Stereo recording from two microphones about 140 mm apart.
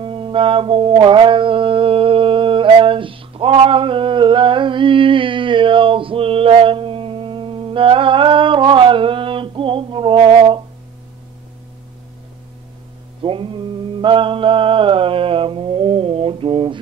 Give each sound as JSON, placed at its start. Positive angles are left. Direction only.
{"t": 0.0, "sound": "mantra", "side_deg": -40}
{"t": 13.2, "sound": "mantra", "side_deg": -40}
{"t": 14.0, "sound": "music", "side_deg": -40}